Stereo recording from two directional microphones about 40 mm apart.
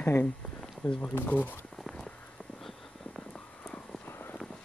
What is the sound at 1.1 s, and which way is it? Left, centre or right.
Speech, left.